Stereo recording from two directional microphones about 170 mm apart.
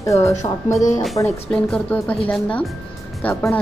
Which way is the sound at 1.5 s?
5° left (ahead or behind).